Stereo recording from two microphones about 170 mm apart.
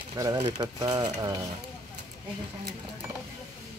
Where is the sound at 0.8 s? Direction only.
20° right (ahead or behind).